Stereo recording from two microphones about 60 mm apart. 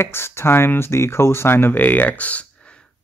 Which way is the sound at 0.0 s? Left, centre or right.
Left.